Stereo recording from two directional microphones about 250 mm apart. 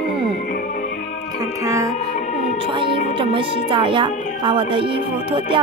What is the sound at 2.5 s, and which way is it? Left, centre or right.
Music, right.